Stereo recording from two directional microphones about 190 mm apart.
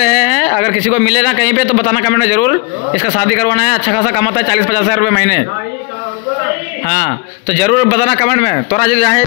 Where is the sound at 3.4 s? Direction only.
50° left (ahead or behind).